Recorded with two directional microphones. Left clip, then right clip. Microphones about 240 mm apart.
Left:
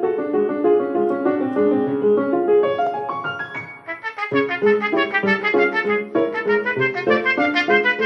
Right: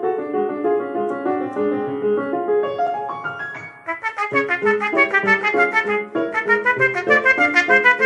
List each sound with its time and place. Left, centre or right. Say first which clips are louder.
0.6 s music: left 3 dB; left
4.2 s music: left 1 dB; centre